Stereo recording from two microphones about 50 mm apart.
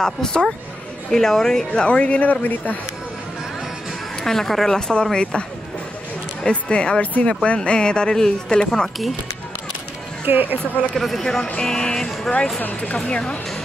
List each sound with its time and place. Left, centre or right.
0.0 s speech: centre
1.7 s speech: left
4.2 s speech: centre
6.4 s speech: centre
10.2 s speech: right
11.0 s speech: centre
12.6 s speech: left